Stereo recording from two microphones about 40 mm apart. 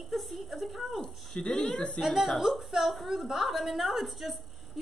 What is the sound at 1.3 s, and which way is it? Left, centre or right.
Speech, centre.